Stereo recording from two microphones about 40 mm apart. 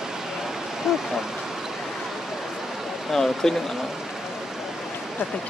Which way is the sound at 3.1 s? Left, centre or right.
Centre.